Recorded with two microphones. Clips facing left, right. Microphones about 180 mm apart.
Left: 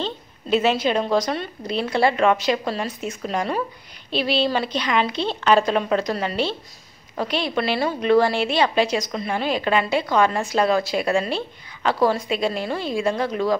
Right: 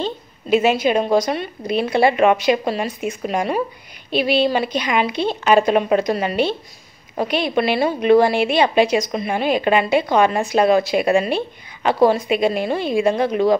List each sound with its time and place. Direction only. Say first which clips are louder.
0.0 s a woman's voice: right 3 dB; 10° right (ahead or behind)